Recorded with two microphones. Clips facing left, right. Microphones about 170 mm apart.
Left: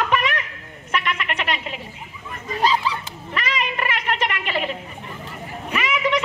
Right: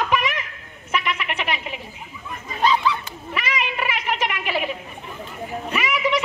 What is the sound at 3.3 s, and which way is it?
Cat, 5° right (ahead or behind).